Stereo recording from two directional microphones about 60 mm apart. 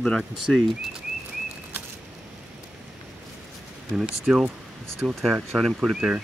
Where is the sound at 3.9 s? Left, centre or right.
Centre.